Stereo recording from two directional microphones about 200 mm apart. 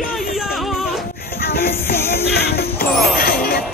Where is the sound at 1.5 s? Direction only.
50° left (ahead or behind).